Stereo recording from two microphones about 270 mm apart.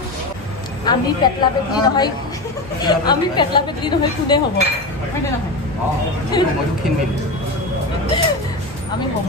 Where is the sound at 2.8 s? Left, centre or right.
Centre.